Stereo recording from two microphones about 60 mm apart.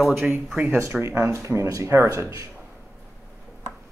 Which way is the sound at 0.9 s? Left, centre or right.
Right.